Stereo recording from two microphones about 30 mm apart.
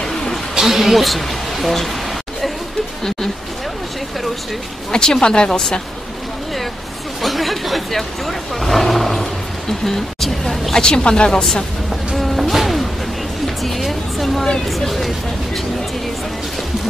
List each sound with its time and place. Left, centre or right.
0.6 s speech: centre
4.9 s speech: left
7.2 s vehicle: centre
10.8 s speech: left
12.2 s music: centre
14.9 s vehicle: centre